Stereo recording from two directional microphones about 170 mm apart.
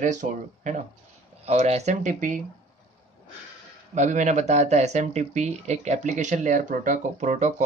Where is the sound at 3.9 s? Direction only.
45° right (ahead or behind).